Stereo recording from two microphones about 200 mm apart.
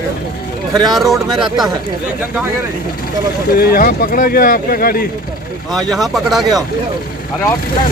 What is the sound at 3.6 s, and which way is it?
Speech, 45° left (ahead or behind).